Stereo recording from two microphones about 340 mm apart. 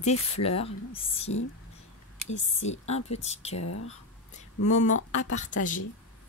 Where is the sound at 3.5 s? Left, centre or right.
Left.